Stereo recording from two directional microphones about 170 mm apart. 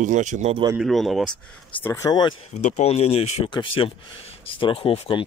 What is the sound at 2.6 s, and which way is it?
Speech, 40° left (ahead or behind).